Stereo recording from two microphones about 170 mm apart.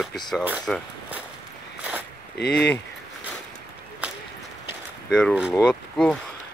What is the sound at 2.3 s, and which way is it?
Speech, 80° left.